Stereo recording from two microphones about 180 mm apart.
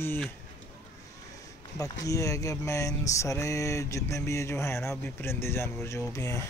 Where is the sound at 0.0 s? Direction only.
10° left (ahead or behind).